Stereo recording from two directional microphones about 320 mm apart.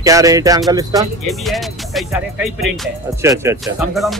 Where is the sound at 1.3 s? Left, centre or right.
Centre.